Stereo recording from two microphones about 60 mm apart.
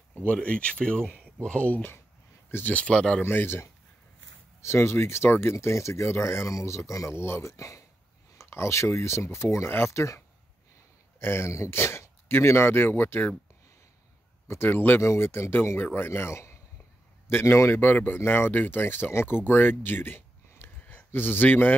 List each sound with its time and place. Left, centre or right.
0.1 s speech: left
3.2 s speech: left
7.2 s speech: left
8.4 s speech: left
11.1 s speech: left
14.7 s speech: left
15.0 s speech: left